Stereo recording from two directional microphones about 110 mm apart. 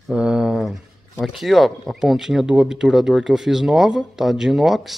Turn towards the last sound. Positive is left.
turn(degrees=0)  # may be behind; listen again after turning